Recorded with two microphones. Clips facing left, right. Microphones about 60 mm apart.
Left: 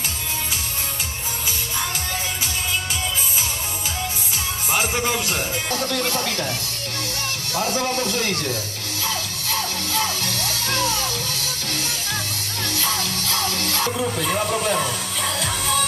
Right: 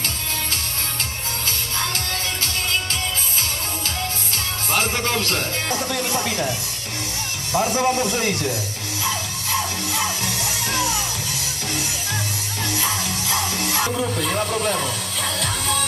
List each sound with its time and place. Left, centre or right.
4.6 s music: centre
5.7 s speech: centre
7.5 s speech: right
9.0 s music: centre
12.7 s music: centre
13.9 s music: centre